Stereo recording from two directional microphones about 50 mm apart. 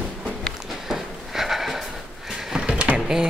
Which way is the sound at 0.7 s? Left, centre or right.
Centre.